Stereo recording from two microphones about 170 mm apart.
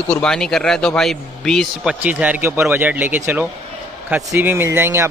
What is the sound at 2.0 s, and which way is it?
Speech, 10° right (ahead or behind).